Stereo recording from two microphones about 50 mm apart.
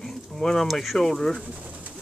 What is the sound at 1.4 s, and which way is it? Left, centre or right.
Pigeon, right.